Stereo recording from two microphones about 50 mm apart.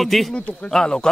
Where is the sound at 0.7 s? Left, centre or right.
Centre.